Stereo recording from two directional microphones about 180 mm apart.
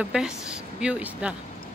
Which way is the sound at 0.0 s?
5° right (ahead or behind).